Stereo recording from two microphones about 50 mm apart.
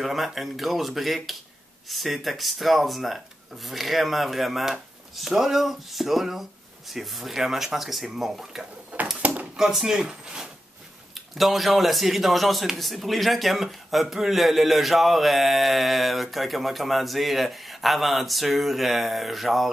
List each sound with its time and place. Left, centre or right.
0.0 s speech: centre
9.2 s a sound: right
9.6 s speech: centre
11.1 s speech: centre